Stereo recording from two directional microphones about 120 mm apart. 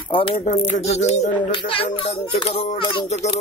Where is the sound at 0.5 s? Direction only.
65° left (ahead or behind).